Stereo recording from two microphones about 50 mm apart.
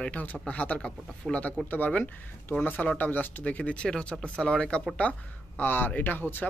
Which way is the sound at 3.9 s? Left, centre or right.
Centre.